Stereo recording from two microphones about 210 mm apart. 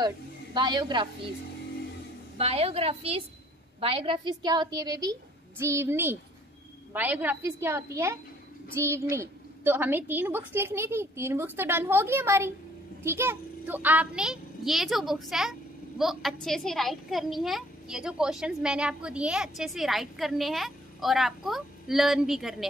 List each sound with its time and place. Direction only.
0.6 s a woman's voice: 20° right (ahead or behind)
2.3 s a woman's voice: 30° right (ahead or behind); by 22.7 s centre (ahead or behind)